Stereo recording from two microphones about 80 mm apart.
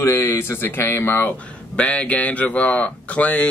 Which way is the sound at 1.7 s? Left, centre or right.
Centre.